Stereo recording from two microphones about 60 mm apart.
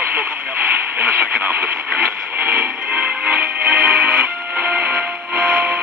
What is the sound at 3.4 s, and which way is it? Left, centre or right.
Music, right.